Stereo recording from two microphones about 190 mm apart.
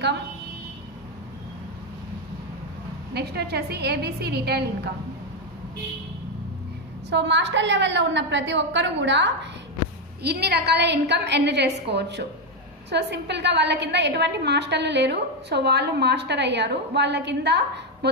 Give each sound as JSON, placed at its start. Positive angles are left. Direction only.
{"t": 3.1, "sound": "a woman's voice", "side_deg": -60}
{"t": 7.1, "sound": "a woman's voice", "side_deg": -70}
{"t": 10.2, "sound": "a woman's voice", "side_deg": -60}